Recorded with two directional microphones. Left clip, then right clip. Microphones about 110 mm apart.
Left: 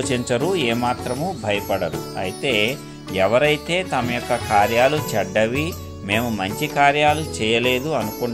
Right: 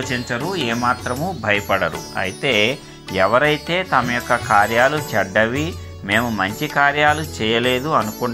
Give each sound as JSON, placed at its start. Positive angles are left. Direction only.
{"t": 0.5, "sound": "speech", "side_deg": 35}
{"t": 2.4, "sound": "speech", "side_deg": 20}